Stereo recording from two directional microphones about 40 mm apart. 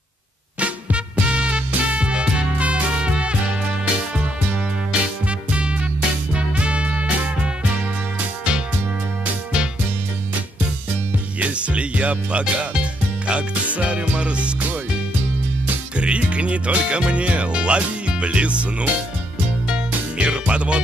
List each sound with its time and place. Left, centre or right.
0.6 s music: right
5.2 s music: right
11.3 s music: right
16.0 s music: right
20.2 s music: right